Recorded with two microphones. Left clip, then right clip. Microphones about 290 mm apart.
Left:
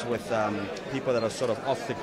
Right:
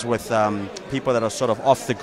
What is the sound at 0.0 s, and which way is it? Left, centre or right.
Speech, right.